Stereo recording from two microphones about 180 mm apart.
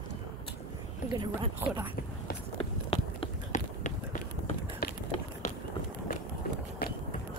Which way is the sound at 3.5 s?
45° left (ahead or behind).